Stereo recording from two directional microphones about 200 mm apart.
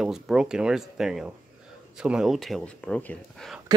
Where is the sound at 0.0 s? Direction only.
5° right (ahead or behind).